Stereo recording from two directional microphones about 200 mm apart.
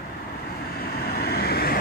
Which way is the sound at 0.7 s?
50° left (ahead or behind).